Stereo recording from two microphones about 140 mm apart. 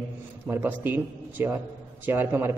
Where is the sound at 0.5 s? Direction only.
15° right (ahead or behind).